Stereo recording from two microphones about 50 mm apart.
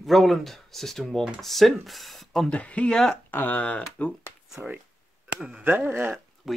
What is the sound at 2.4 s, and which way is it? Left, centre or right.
Speech, left.